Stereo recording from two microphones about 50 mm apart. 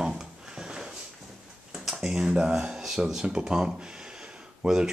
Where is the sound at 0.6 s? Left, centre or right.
Centre.